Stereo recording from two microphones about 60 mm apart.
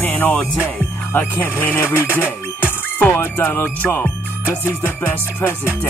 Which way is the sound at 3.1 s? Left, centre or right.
Left.